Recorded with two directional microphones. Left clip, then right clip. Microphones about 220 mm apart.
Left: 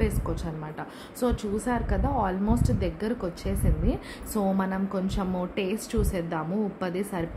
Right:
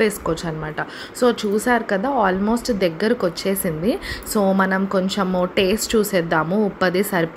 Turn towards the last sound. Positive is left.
turn(degrees=-20)  # may be behind; listen again after turning